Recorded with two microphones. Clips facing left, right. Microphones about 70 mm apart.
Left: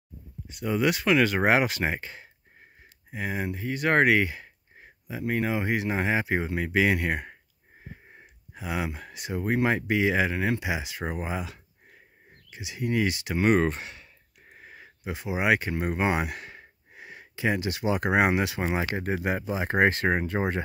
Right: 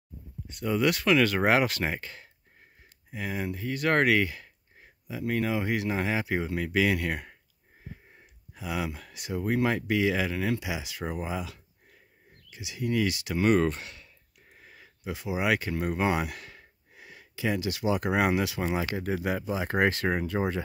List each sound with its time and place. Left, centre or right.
0.5 s speech: centre; by 20.6 s left